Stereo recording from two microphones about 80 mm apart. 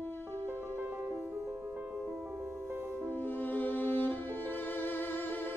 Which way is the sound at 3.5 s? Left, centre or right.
Left.